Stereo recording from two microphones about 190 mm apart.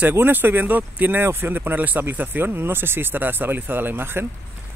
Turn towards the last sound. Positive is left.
turn(degrees=-10)  # may be behind; listen again after turning